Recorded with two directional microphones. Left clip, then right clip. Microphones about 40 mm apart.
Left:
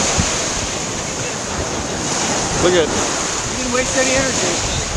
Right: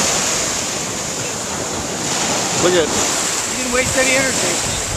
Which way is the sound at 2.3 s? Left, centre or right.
Right.